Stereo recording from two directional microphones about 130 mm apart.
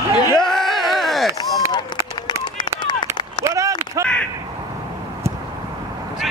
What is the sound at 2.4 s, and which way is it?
Run, 35° left (ahead or behind).